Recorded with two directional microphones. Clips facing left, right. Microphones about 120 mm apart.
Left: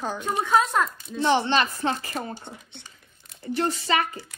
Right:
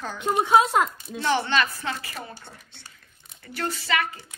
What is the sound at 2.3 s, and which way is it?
Speech, 20° left (ahead or behind).